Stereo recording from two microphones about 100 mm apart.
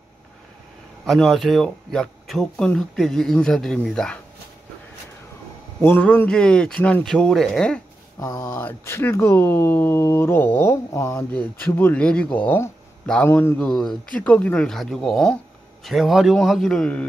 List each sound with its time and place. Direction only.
1.0 s speech: 5° left (ahead or behind)
5.8 s speech: 20° left (ahead or behind)
8.2 s speech: 35° left (ahead or behind)
8.5 s speech: 25° left (ahead or behind)
11.3 s a man's voice: 15° left (ahead or behind)
13.3 s speech: 25° left (ahead or behind)
13.6 s speech: 5° left (ahead or behind)